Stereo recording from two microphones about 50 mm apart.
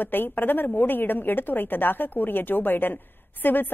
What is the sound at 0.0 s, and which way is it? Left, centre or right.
A woman's voice, left.